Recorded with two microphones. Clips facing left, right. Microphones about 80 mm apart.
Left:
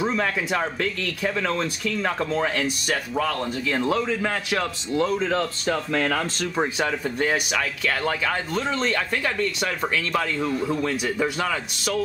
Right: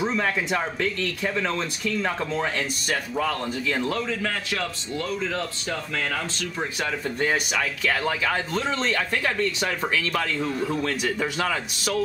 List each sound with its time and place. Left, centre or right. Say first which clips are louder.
0.2 s speech: left 1 dB; centre
3.8 s speech: left 3 dB; centre
7.2 s speech: even; centre